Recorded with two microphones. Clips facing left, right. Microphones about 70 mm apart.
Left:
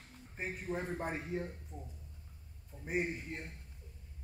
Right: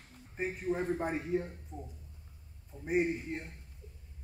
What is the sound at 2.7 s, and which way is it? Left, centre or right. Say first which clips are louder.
Speech: right 4 dB; right.